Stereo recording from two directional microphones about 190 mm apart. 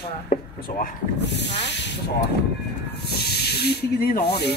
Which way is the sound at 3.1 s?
60° left (ahead or behind).